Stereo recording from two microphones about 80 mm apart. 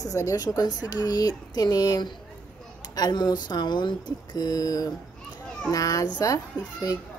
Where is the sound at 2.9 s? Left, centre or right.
Left.